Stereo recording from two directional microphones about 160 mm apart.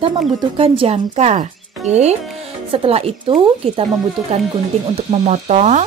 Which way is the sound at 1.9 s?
45° right (ahead or behind).